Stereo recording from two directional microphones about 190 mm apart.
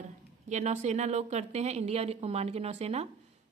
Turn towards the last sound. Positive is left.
turn(degrees=-35)  # may be behind; listen again after turning